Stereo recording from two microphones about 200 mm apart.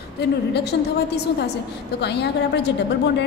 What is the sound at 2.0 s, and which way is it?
Speech, 60° left (ahead or behind).